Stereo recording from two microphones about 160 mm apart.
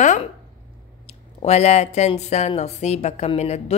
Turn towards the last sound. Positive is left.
turn(degrees=45)  # may be behind; listen again after turning